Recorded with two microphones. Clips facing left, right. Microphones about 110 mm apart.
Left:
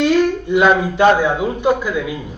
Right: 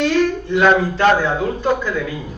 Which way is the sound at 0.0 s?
15° left (ahead or behind).